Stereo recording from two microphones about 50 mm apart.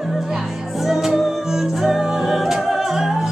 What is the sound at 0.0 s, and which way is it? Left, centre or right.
Music, centre.